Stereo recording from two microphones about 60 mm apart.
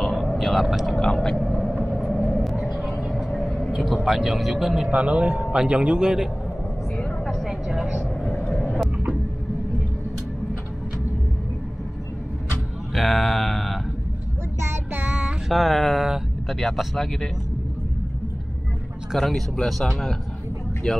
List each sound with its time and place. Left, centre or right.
0.0 s a sound: centre
0.9 s a sound: centre
2.2 s vehicle: centre
3.7 s speech: centre
4.9 s a man's voice: centre
7.4 s vehicle: centre
8.4 s vehicle: left
12.9 s mantra: centre
14.6 s child singing: right
15.0 s music: right
15.4 s speech: centre
19.1 s speech: centre